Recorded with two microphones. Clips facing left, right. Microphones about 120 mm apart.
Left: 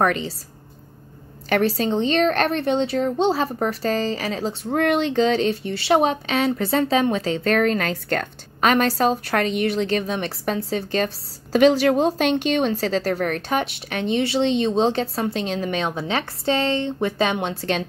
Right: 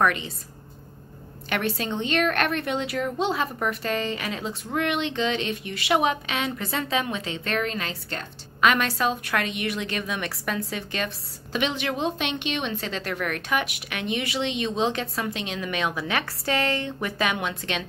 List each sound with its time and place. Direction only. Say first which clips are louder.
0.0 s speech: left 3 dB; 35° left (ahead or behind)
1.5 s speech: left 7 dB; 35° left (ahead or behind); by 8.6 s 50° left (ahead or behind)
8.6 s speech: left 4 dB; 35° left (ahead or behind)